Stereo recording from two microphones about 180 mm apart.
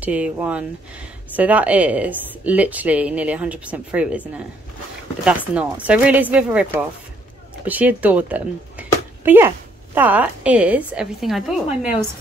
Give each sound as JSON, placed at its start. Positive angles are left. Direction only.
{"t": 0.0, "sound": "a woman's voice", "side_deg": -10}